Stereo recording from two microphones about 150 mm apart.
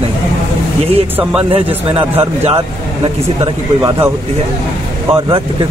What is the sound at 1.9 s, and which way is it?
Speech, 40° right (ahead or behind).